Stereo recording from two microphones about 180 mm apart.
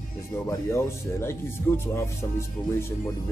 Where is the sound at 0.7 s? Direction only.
15° left (ahead or behind).